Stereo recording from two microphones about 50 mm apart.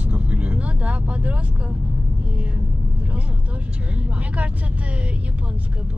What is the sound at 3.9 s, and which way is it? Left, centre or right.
Speech, right.